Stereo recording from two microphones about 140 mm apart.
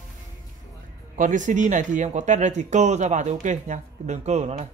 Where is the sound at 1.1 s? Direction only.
65° right (ahead or behind).